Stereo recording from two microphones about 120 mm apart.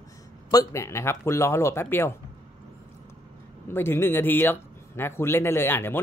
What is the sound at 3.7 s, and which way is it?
Speech, 20° left (ahead or behind).